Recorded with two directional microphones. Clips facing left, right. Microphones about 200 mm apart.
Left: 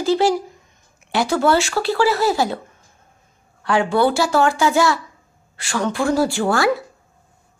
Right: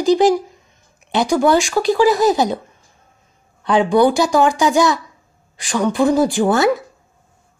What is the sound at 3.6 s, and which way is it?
Speech, 20° right (ahead or behind).